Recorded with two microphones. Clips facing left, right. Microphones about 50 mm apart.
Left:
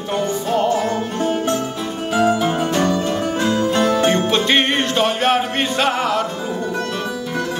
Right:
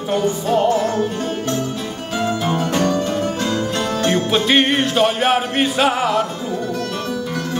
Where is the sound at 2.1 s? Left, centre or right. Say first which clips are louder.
Left 3 dB; centre.